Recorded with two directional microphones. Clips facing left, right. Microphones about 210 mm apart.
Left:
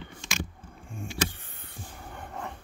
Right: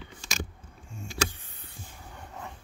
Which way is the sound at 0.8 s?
55° left (ahead or behind).